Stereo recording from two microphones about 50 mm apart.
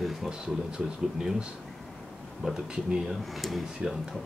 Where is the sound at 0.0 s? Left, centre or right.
Centre.